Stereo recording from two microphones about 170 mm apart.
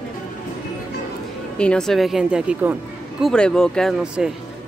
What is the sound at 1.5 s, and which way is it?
Speech, 5° left (ahead or behind).